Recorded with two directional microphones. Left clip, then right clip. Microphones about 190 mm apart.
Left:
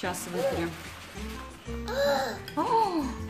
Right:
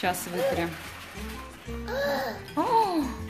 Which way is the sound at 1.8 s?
10° right (ahead or behind).